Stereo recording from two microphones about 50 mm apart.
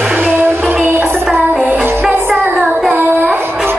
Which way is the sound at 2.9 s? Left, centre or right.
Right.